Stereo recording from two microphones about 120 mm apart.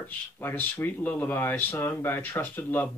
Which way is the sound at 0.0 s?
15° left (ahead or behind).